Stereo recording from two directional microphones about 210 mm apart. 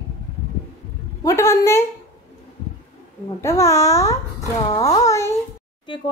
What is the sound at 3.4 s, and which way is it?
A woman's voice, 15° left (ahead or behind).